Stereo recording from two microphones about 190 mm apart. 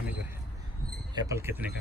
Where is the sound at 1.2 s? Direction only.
15° right (ahead or behind).